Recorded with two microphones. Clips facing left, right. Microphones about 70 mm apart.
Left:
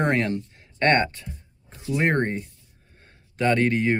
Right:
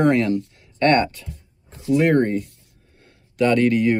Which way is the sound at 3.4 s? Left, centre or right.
Left.